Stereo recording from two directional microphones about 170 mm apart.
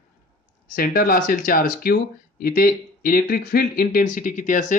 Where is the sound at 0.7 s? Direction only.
55° left (ahead or behind).